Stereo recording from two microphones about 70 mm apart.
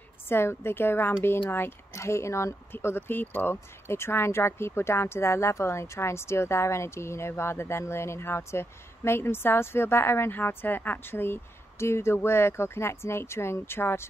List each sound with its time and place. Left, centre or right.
0.3 s a woman's voice: left